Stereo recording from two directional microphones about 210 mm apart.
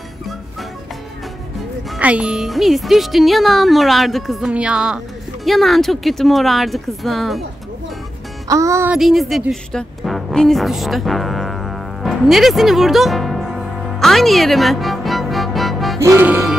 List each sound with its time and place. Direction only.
1.9 s speech: 5° right (ahead or behind)
8.5 s speech: 15° right (ahead or behind)
16.0 s music: 10° right (ahead or behind)